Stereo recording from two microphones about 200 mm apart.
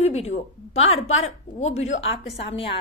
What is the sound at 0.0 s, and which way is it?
A woman's voice, 35° left (ahead or behind).